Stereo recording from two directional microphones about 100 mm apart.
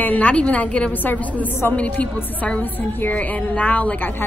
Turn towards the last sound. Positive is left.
turn(degrees=20)  # may be behind; listen again after turning